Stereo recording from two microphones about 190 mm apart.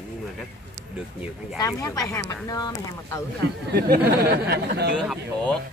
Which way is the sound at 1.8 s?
15° left (ahead or behind).